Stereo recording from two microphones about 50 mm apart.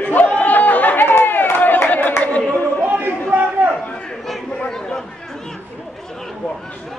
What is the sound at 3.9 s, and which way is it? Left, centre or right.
Chatter, centre.